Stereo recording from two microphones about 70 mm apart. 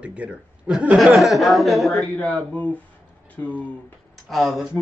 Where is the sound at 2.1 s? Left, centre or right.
Left.